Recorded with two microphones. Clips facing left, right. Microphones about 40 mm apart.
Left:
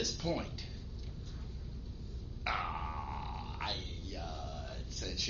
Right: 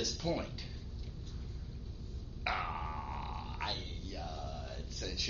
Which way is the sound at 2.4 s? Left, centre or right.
Centre.